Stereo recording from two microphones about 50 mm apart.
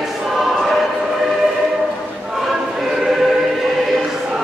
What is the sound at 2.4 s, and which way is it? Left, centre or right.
Choir, centre.